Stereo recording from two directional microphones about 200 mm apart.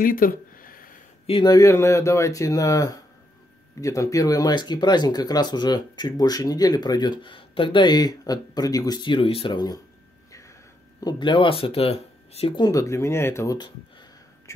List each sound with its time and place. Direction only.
0.0 s a sound: 45° left (ahead or behind)
1.2 s speech: 25° left (ahead or behind)
11.0 s speech: 20° left (ahead or behind)